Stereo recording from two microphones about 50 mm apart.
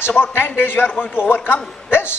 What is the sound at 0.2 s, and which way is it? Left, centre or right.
A man's voice, left.